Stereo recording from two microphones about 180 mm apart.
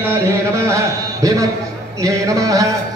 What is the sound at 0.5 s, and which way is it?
Speech, 15° right (ahead or behind).